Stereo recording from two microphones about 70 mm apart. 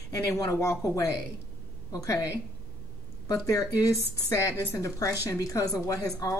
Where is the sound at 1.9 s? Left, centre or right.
Left.